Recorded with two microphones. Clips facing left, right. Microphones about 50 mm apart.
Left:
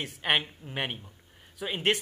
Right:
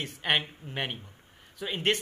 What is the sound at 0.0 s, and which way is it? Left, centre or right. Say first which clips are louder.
A woman's voice: left 1 dB; centre.